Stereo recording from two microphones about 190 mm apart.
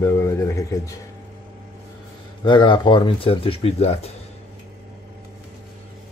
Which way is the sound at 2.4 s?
25° left (ahead or behind).